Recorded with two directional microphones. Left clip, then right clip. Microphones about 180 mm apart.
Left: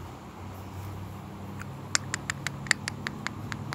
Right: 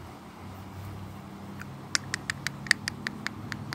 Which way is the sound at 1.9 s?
30° right (ahead or behind).